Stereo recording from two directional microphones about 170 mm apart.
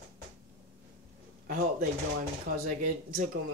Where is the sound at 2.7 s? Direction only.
50° right (ahead or behind).